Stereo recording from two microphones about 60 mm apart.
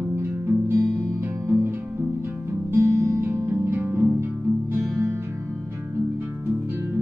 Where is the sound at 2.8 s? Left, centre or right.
Right.